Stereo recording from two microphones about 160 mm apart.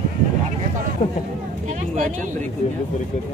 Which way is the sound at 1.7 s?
45° right (ahead or behind).